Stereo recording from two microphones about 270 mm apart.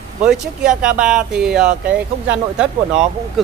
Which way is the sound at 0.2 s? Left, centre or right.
Centre.